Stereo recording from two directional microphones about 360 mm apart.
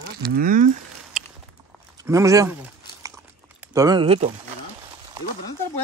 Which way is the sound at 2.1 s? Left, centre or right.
Centre.